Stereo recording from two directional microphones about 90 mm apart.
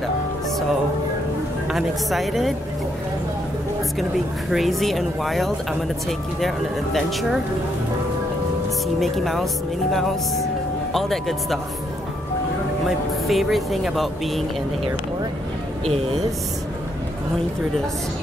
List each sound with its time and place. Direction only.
1.7 s speech: centre (ahead or behind)
4.5 s speech: centre (ahead or behind)
8.8 s speech: centre (ahead or behind)
10.9 s speech: centre (ahead or behind)
12.8 s speech: centre (ahead or behind)